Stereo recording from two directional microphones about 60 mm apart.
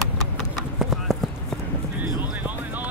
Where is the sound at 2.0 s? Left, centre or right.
Right.